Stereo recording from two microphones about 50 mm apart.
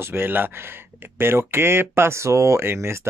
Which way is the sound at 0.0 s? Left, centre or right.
Right.